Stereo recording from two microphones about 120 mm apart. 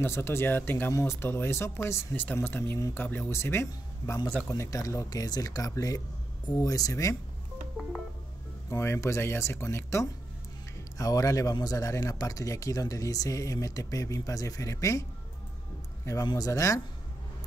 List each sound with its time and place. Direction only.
0.0 s speech: 20° left (ahead or behind)
8.6 s speech: 20° left (ahead or behind)
16.3 s speech: 30° left (ahead or behind)